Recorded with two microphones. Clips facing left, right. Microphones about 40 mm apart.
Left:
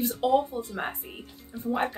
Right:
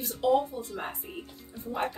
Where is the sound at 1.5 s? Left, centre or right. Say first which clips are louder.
Left 7 dB; centre.